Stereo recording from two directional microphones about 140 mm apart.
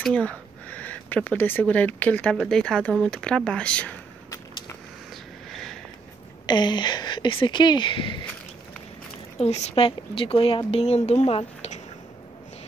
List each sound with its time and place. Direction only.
0.0 s speech: 10° left (ahead or behind)
4.3 s a sound: 25° left (ahead or behind)
5.5 s sniff: centre (ahead or behind)
6.4 s speech: 30° left (ahead or behind)
9.4 s speech: 50° left (ahead or behind)